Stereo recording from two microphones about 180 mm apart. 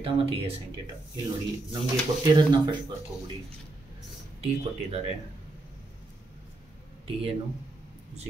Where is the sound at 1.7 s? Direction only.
25° right (ahead or behind).